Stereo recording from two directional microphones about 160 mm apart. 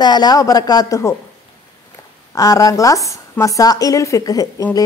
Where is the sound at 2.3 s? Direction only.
20° left (ahead or behind).